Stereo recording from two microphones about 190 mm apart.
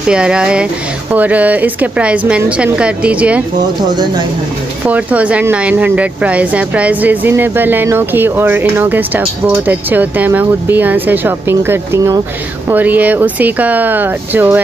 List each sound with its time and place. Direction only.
0.1 s speech: 5° right (ahead or behind)
3.9 s speech: 20° right (ahead or behind)
4.8 s speech: 10° right (ahead or behind)